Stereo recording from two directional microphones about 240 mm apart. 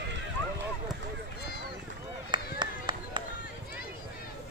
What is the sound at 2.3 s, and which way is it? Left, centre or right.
Clapping, centre.